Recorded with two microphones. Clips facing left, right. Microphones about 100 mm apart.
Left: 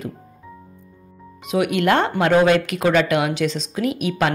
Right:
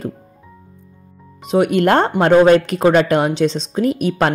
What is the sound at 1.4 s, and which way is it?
Speech, 35° right (ahead or behind).